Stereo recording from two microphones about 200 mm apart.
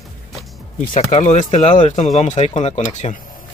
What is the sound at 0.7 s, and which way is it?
Speech, 45° left (ahead or behind).